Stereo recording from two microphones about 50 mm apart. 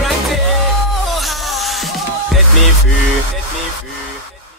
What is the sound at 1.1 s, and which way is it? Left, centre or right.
Music, centre.